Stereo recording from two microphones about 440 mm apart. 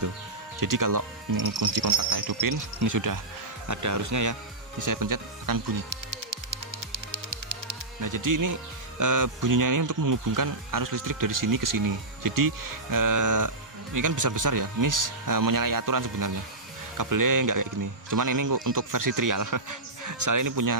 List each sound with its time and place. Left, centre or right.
0.6 s a man's voice: right
6.9 s music: right
8.0 s a man's voice: right